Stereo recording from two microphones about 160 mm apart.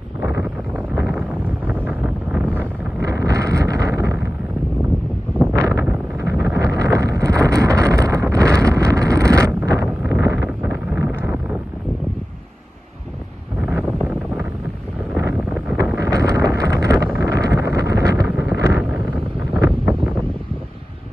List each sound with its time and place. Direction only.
0.2 s a sound: 15° right (ahead or behind)
1.7 s vehicle: 10° right (ahead or behind)
3.0 s wind noise: 20° right (ahead or behind)
5.5 s wind noise: 15° right (ahead or behind)
13.6 s wind noise: 10° right (ahead or behind)